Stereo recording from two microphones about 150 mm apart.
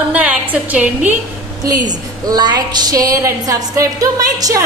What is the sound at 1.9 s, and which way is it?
A woman's voice, 25° right (ahead or behind).